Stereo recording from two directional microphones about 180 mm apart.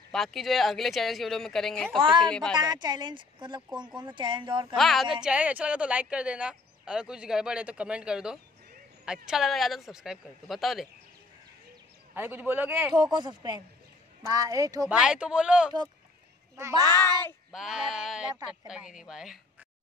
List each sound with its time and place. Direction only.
0.1 s a woman's voice: centre (ahead or behind)
2.0 s speech: 30° right (ahead or behind)
2.2 s a woman's voice: 5° left (ahead or behind)
2.5 s speech: 20° right (ahead or behind)
4.7 s a woman's voice: centre (ahead or behind)
12.2 s a man's voice: 10° right (ahead or behind)
12.9 s speech: 25° right (ahead or behind)
14.9 s a woman's voice: 5° right (ahead or behind)
16.5 s a child's voice: 15° right (ahead or behind)
17.5 s a woman's voice: centre (ahead or behind)